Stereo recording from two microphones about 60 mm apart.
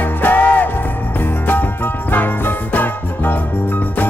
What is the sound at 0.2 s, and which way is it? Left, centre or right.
Music, left.